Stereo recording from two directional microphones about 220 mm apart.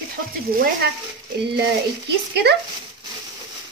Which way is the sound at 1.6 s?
50° right (ahead or behind).